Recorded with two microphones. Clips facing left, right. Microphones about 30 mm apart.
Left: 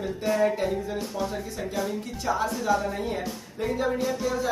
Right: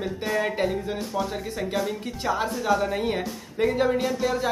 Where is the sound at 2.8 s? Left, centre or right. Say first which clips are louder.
Right 4 dB; right.